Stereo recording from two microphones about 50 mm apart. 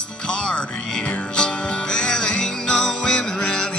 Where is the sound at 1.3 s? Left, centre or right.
Centre.